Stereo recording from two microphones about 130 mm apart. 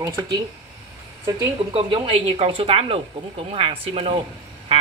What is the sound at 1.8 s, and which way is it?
Speech, 40° right (ahead or behind).